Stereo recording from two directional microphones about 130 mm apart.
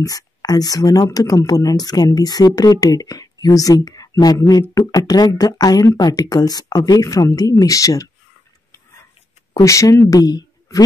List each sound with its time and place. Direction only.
0.0 s speech: 30° left (ahead or behind)
9.5 s speech: 25° left (ahead or behind)